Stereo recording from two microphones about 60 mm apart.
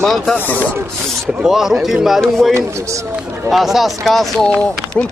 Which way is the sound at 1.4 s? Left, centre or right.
Centre.